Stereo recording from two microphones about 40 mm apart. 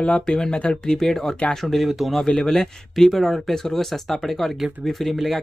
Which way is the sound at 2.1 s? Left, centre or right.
Centre.